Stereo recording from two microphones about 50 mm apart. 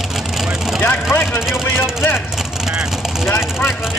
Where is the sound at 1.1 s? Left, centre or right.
Left.